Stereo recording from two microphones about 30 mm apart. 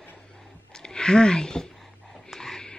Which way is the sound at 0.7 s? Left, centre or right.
Left.